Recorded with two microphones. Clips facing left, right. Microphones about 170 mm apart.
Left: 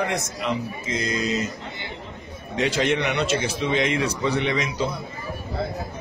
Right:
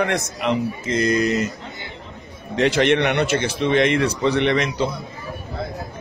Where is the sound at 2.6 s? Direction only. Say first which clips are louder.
Right 5 dB; 65° right (ahead or behind).